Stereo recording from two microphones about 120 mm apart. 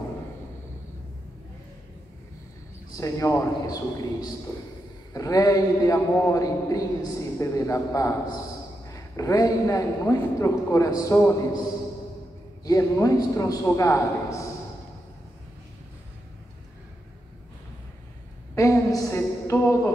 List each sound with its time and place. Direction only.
3.0 s a man's voice: 25° left (ahead or behind)
12.6 s a man's voice: 25° left (ahead or behind)
18.5 s a sound: 25° left (ahead or behind)